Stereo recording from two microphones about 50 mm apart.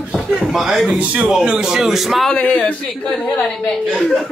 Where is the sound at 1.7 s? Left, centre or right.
Centre.